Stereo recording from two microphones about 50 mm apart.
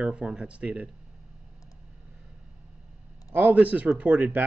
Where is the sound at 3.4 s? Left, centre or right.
Right.